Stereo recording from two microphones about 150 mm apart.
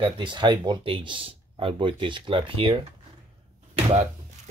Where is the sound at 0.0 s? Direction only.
30° right (ahead or behind).